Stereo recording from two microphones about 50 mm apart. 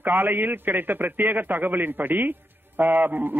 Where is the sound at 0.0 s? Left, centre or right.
Right.